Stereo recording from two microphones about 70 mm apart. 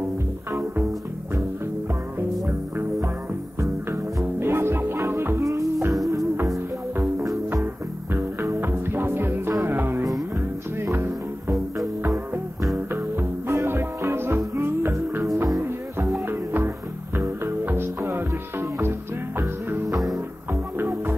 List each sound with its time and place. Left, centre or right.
3.9 s music: right
8.1 s music: right
13.5 s music: right
16.3 s music: right